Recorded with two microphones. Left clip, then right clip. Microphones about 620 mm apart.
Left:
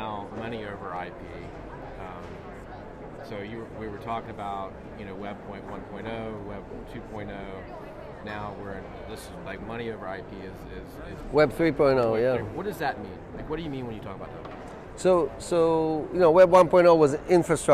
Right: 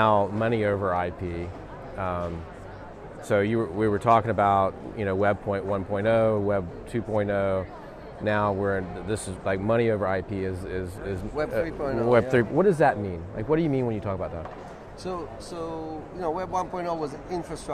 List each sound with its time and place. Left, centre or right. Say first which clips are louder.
0.0 s speech: right 13 dB; right
3.3 s speech: right 15 dB; right
11.3 s speech: left 7 dB; left
12.5 s speech: right 10 dB; right
15.0 s speech: left 12 dB; left